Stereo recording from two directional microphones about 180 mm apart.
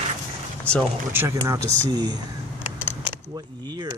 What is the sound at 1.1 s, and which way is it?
Speech, 15° right (ahead or behind).